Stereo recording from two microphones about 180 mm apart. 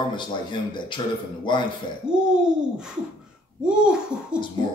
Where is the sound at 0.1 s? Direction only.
25° left (ahead or behind).